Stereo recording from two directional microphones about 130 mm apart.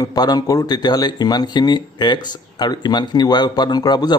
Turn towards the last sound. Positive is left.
turn(degrees=35)  # may be behind; listen again after turning